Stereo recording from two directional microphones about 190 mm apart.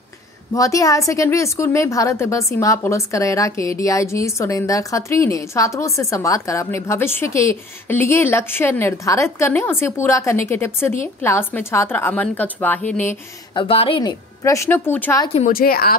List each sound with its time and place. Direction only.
0.6 s a woman's voice: 15° left (ahead or behind)
13.6 s a woman's voice: 30° left (ahead or behind); by 15.3 s 10° left (ahead or behind)
15.3 s a woman's voice: 45° left (ahead or behind)